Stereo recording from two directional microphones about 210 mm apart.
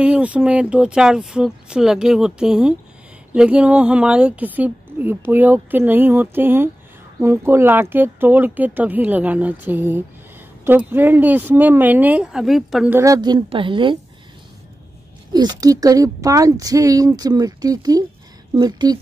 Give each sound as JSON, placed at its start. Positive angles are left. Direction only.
{"t": 0.0, "sound": "speech", "side_deg": -5}
{"t": 15.3, "sound": "a woman's voice", "side_deg": -20}